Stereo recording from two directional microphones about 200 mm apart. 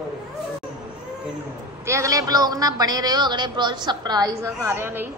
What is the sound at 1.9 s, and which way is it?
A man's voice, 15° right (ahead or behind).